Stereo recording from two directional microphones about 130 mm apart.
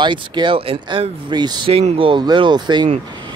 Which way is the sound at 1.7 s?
50° right (ahead or behind).